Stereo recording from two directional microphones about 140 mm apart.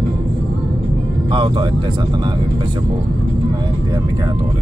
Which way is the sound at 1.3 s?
35° right (ahead or behind).